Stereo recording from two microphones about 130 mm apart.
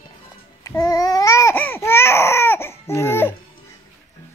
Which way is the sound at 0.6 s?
25° left (ahead or behind).